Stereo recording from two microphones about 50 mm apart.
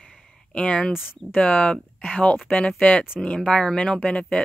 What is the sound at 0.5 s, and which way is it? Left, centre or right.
Speech, left.